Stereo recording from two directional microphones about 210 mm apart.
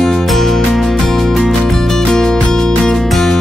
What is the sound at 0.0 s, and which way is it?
Music, centre (ahead or behind).